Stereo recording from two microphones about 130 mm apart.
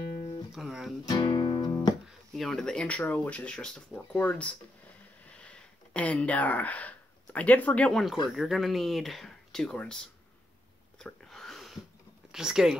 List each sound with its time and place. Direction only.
0.5 s speech: centre (ahead or behind)
1.0 s music: 35° left (ahead or behind)
2.3 s speech: 5° left (ahead or behind)
11.0 s a sound: 5° left (ahead or behind)
12.3 s speech: 5° right (ahead or behind)